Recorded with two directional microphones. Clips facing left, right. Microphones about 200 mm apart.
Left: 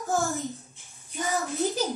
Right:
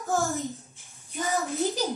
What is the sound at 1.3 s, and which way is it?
Speech, centre (ahead or behind).